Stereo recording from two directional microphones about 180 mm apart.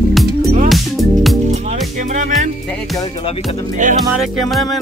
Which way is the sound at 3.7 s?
45° right (ahead or behind).